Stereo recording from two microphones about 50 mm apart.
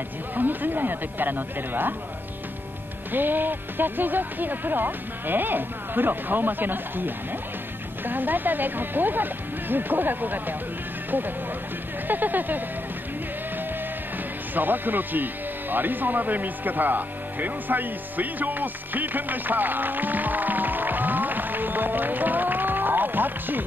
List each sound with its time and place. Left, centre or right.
0.4 s speech: right
3.1 s speech: right
14.5 s speech: right